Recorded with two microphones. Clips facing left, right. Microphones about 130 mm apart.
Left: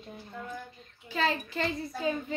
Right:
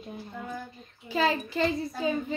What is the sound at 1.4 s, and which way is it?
Speech, 25° right (ahead or behind).